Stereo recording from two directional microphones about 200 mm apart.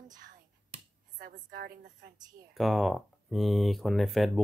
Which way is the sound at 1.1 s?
40° right (ahead or behind).